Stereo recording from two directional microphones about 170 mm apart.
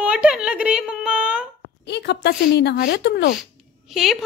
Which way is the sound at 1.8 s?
80° left.